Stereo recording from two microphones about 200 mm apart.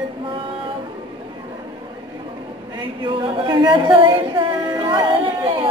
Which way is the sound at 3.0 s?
25° right (ahead or behind).